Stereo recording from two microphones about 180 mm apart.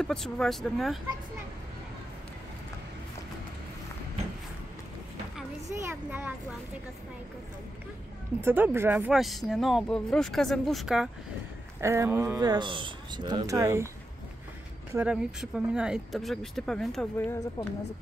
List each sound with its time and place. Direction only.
0.0 s speech: 5° left (ahead or behind)
5.9 s speech: 10° right (ahead or behind)
8.4 s speech: 10° right (ahead or behind)
11.8 s speech: 15° right (ahead or behind)
15.0 s speech: 5° right (ahead or behind)
17.6 s a woman's voice: 20° left (ahead or behind)